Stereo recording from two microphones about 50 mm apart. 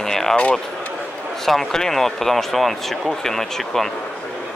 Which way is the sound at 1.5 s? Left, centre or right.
Centre.